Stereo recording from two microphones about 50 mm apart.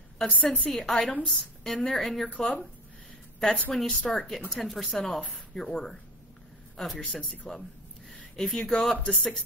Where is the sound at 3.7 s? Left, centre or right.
Centre.